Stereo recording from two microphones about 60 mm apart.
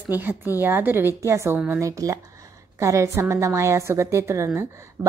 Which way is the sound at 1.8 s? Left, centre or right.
Right.